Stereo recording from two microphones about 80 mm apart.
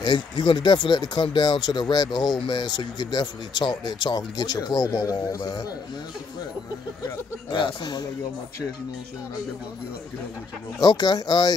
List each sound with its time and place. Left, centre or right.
0.0 s speech: left
7.5 s speech: left
10.8 s speech: left